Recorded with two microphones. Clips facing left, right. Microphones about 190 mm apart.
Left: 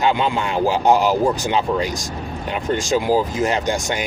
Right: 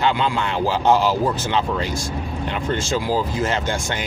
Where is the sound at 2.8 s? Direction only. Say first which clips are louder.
Left 7 dB; 15° left (ahead or behind).